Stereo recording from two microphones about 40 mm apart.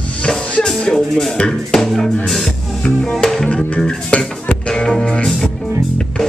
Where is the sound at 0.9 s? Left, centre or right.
Centre.